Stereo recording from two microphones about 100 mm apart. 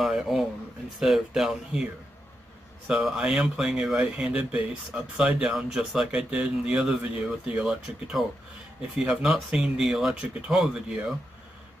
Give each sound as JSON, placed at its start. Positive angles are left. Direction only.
{"t": 0.0, "sound": "speech", "side_deg": -5}
{"t": 2.9, "sound": "speech", "side_deg": -5}